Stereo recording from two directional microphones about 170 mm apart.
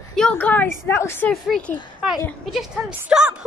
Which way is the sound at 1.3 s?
5° left (ahead or behind).